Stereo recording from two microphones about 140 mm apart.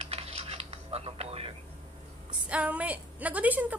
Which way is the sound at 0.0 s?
45° right (ahead or behind).